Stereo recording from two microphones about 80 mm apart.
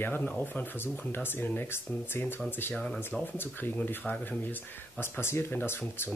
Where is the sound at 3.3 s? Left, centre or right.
Left.